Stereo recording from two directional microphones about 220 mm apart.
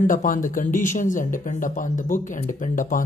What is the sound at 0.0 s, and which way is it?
Speech, 35° left (ahead or behind).